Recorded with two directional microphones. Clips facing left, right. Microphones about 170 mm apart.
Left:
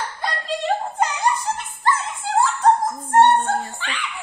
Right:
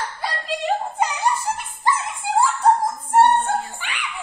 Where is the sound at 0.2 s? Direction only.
5° right (ahead or behind).